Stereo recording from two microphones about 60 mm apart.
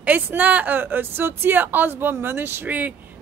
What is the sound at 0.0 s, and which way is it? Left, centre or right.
Speech, right.